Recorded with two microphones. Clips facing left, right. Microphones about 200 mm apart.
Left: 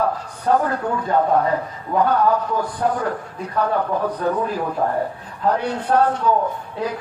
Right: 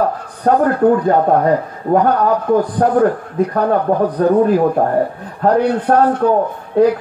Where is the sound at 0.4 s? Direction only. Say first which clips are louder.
Right 7 dB; 55° right (ahead or behind).